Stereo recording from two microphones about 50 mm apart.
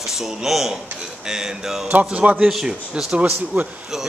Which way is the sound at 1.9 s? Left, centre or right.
Right.